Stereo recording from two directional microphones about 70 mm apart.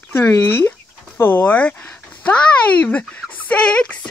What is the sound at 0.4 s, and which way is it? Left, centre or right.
Speech, left.